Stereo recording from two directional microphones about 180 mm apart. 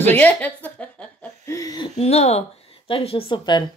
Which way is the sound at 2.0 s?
35° left (ahead or behind).